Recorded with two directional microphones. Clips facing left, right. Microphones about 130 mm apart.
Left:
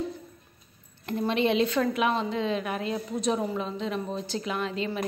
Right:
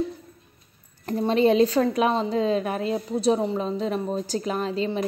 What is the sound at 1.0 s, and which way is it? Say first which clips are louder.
A woman's voice: right 5 dB; 35° right (ahead or behind).